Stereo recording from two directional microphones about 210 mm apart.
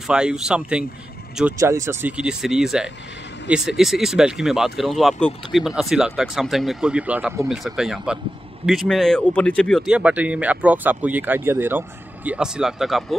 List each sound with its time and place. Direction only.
0.0 s speech: 5° right (ahead or behind)